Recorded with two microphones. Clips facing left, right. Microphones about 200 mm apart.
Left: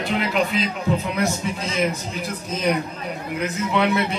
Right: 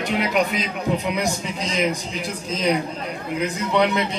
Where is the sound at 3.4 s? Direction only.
15° right (ahead or behind).